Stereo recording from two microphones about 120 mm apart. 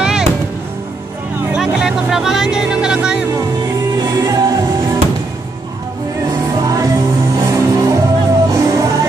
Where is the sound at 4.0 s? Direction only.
35° right (ahead or behind).